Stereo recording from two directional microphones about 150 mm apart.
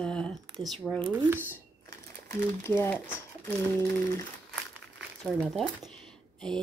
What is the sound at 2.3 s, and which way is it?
Speech, 15° left (ahead or behind).